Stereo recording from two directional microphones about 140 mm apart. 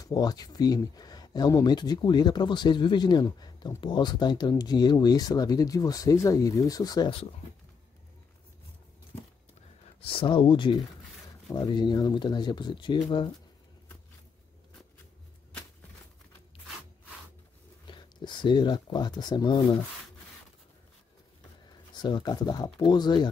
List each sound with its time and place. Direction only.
0.0 s speech: 30° left (ahead or behind)
9.9 s speech: 40° left (ahead or behind)
17.8 s speech: 35° left (ahead or behind)
22.0 s speech: 30° left (ahead or behind)